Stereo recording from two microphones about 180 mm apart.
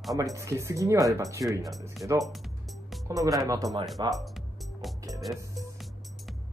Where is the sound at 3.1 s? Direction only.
20° right (ahead or behind).